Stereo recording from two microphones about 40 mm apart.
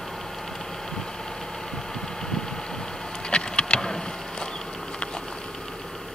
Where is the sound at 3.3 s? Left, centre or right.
Left.